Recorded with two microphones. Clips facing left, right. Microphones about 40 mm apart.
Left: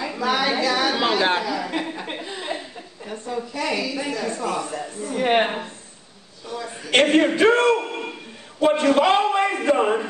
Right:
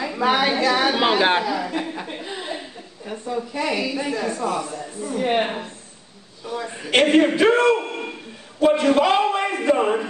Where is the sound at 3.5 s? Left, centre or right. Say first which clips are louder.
Right 1 dB; centre.